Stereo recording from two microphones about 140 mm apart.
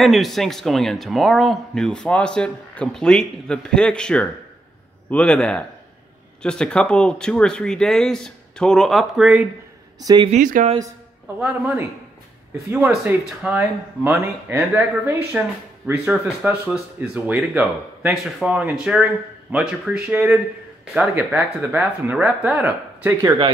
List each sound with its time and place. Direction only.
0.0 s a man's voice: centre (ahead or behind)
9.9 s speech: 25° right (ahead or behind)
10.3 s speech: 65° right (ahead or behind)
11.3 s speech: 10° right (ahead or behind)